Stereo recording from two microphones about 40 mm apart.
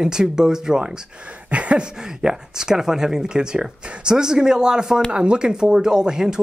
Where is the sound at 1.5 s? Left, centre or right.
Right.